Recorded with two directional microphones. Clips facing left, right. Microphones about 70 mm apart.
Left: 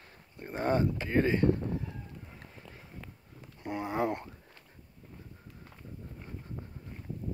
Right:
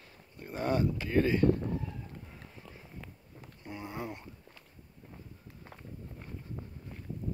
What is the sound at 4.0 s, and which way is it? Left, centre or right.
Speech, left.